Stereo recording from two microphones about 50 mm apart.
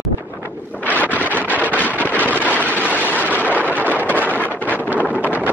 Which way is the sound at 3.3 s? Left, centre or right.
Right.